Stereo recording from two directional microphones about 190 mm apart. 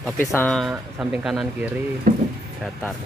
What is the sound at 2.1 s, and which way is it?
Music, 50° right (ahead or behind).